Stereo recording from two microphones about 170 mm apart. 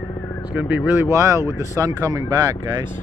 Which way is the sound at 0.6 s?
10° right (ahead or behind).